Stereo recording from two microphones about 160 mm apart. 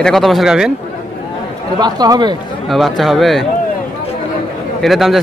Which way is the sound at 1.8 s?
25° right (ahead or behind).